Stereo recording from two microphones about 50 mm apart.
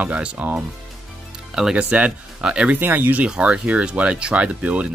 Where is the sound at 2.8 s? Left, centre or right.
Right.